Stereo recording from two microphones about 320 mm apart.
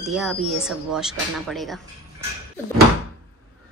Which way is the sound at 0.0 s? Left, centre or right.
Centre.